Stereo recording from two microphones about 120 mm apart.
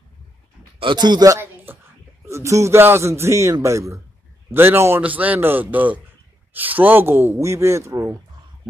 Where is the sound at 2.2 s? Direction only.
25° right (ahead or behind).